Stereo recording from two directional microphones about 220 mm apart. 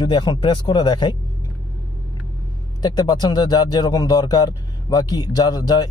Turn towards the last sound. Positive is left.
turn(degrees=20)  # may be behind; listen again after turning